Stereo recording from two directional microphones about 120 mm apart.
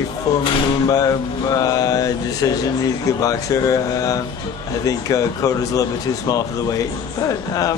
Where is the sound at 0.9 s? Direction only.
30° left (ahead or behind).